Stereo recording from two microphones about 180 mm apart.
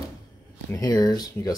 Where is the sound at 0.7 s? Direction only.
20° left (ahead or behind).